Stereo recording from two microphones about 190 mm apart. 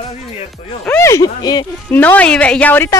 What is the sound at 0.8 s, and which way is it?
Speech, 15° left (ahead or behind).